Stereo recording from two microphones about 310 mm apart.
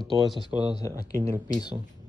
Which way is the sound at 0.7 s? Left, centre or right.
Centre.